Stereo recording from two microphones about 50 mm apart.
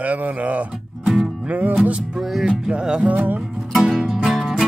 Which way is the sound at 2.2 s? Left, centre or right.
Centre.